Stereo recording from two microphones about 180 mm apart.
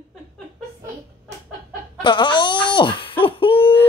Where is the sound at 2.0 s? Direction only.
25° left (ahead or behind).